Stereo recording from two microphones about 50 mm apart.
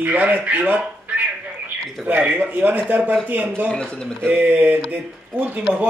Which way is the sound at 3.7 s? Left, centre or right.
Centre.